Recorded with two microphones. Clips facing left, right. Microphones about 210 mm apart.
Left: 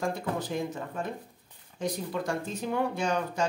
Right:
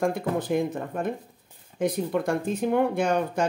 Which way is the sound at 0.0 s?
55° right (ahead or behind).